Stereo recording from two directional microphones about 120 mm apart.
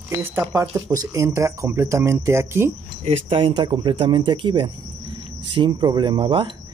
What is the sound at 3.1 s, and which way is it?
Speech, 50° right (ahead or behind).